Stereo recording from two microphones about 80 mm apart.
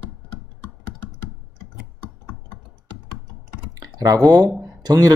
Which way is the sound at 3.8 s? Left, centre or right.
Right.